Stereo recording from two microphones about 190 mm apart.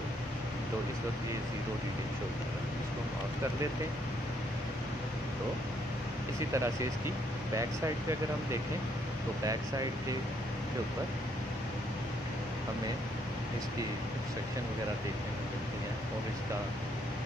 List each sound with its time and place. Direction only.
6.5 s speech: 15° right (ahead or behind)